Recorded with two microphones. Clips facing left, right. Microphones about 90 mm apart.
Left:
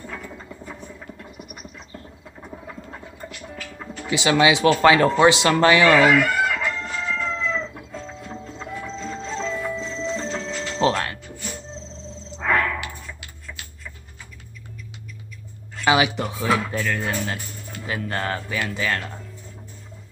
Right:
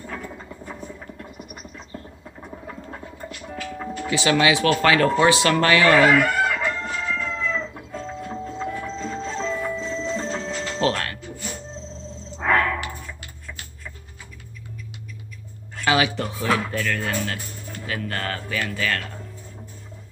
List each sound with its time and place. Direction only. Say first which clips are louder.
2.4 s a sound: right 1 dB; 5° right (ahead or behind)
4.1 s speech: left 1 dB; 20° left (ahead or behind)
6.0 s crowing: even; 5° left (ahead or behind)
7.1 s chicken: left 2 dB; 5° right (ahead or behind)
8.3 s music: right 7 dB; 5° right (ahead or behind)
10.8 s music: left 3 dB; 20° left (ahead or behind)
12.4 s a sound: right 1 dB; 5° right (ahead or behind)
15.8 s speech: left 2 dB; 20° left (ahead or behind)